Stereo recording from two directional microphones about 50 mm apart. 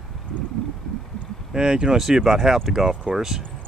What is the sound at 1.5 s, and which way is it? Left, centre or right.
Speech, centre.